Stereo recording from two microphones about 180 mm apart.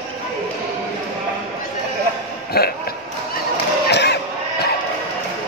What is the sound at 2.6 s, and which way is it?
Speech, 60° left (ahead or behind).